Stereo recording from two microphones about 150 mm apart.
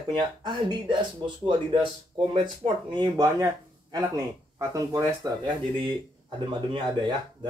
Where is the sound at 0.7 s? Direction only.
30° right (ahead or behind).